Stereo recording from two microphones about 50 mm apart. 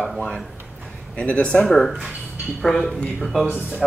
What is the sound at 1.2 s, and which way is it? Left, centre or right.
Speech, left.